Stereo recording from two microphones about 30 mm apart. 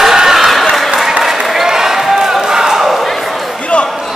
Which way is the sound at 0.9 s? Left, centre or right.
Centre.